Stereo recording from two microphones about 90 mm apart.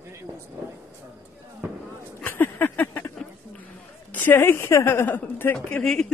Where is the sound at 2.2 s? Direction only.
20° left (ahead or behind).